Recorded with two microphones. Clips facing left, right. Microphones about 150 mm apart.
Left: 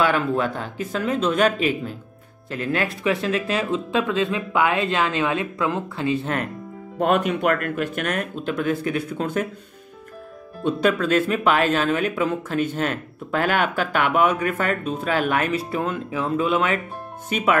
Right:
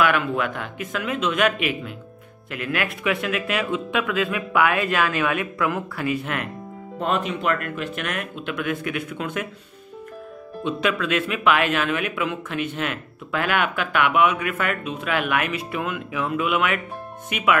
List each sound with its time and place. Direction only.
0.0 s speech: 35° left (ahead or behind)
7.0 s speech: 50° left (ahead or behind); by 9.5 s 35° left (ahead or behind)
10.6 s speech: 40° left (ahead or behind)